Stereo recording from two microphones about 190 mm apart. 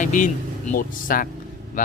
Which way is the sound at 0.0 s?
40° left (ahead or behind).